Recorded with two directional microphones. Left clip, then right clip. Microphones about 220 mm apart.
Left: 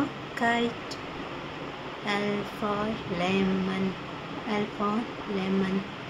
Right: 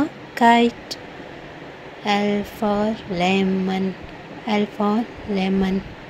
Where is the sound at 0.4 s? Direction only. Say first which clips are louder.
Right 12 dB; 30° right (ahead or behind).